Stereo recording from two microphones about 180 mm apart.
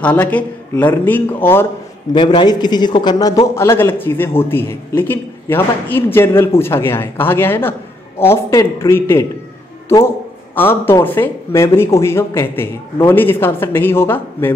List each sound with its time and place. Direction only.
0.0 s speech: 10° left (ahead or behind)
2.1 s a man's voice: 25° left (ahead or behind)